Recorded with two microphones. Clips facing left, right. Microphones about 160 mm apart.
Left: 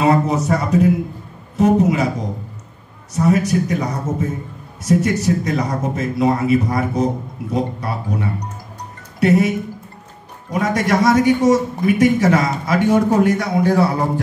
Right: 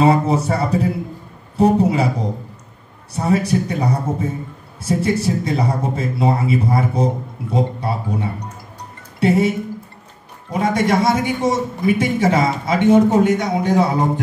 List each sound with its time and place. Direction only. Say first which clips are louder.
0.0 s a man's voice: right 1 dB; 30° right (ahead or behind)
3.2 s a man's voice: left 2 dB; 30° right (ahead or behind)
10.6 s a man's voice: even; 25° right (ahead or behind)